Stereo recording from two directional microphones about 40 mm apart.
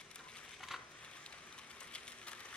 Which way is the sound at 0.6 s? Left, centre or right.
Centre.